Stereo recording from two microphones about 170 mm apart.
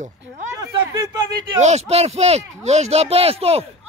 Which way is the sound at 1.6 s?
40° right (ahead or behind).